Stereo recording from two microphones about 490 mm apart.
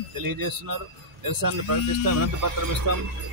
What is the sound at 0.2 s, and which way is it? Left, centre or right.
A man's voice, right.